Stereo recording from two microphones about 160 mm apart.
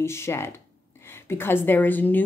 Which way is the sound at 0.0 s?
15° left (ahead or behind).